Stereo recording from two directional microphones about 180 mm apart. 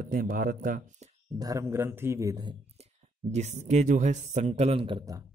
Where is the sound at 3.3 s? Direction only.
40° right (ahead or behind); by 5.2 s 25° right (ahead or behind).